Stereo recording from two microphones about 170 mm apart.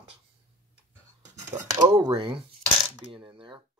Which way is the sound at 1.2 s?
45° right (ahead or behind).